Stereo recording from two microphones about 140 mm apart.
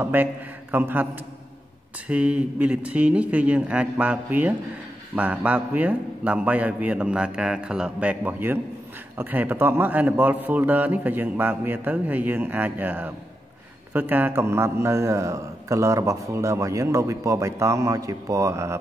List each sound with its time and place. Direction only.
0.0 s a man's voice: 15° right (ahead or behind)
2.0 s a man's voice: 10° right (ahead or behind)